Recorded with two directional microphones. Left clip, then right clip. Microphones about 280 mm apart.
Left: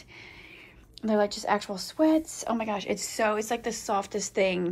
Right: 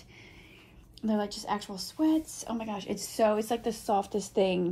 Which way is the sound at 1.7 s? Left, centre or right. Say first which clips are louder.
Left 5 dB; right.